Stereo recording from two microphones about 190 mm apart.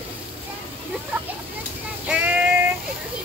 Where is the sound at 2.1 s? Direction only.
10° right (ahead or behind).